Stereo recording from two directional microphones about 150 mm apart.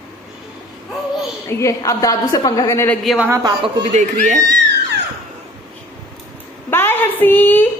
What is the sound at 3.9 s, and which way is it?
Speech, 55° right (ahead or behind).